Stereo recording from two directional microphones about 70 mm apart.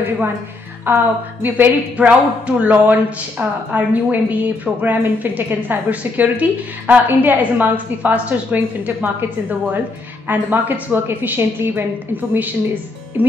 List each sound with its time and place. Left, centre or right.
0.8 s a woman's voice: right